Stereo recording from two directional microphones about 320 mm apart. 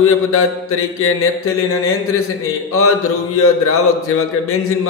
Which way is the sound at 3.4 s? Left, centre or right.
Left.